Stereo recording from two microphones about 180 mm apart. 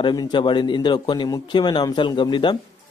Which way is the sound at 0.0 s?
25° left (ahead or behind).